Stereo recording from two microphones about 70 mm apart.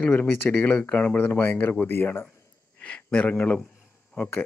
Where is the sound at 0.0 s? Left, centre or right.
Left.